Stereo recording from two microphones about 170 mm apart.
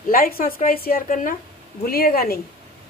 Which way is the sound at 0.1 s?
60° left (ahead or behind).